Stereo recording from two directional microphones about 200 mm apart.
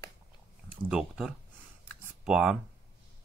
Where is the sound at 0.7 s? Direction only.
5° right (ahead or behind).